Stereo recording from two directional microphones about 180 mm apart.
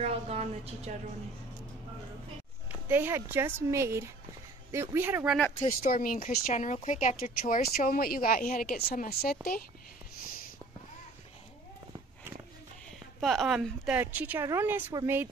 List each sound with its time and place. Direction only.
0.0 s a woman's voice: 35° right (ahead or behind)
2.7 s speech: 10° right (ahead or behind)
5.6 s speech: 45° left (ahead or behind)
13.2 s speech: centre (ahead or behind)